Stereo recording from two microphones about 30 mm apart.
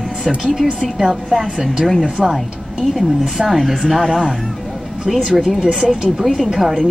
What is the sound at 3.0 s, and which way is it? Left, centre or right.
A woman's voice, centre.